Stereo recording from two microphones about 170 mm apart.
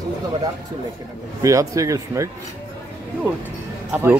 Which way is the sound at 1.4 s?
20° right (ahead or behind).